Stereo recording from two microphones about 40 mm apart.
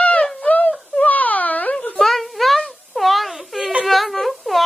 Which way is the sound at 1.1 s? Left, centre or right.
Left.